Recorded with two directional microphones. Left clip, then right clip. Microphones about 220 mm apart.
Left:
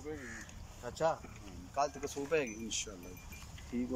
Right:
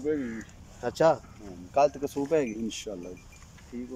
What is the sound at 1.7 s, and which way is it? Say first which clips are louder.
Speech: right 11 dB; 40° right (ahead or behind).